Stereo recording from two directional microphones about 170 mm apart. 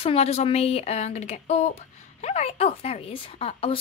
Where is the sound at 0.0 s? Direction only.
35° left (ahead or behind).